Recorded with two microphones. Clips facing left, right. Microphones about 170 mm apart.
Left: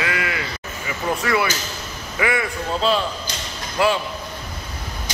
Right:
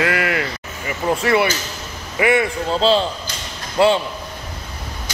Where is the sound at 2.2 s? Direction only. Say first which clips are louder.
Right 5 dB; 25° right (ahead or behind).